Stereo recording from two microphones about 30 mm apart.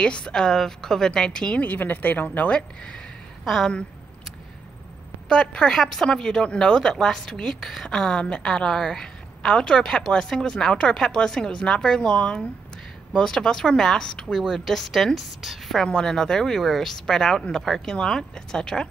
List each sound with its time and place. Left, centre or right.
0.0 s speech: left
0.4 s speech: centre
1.6 s speech: left
2.5 s speech: left
5.3 s a woman's voice: left
8.2 s a woman's voice: left
13.2 s speech: left
14.5 s a woman's voice: centre
15.1 s a woman's voice: centre
15.9 s speech: left
16.6 s a woman's voice: centre
16.9 s speech: centre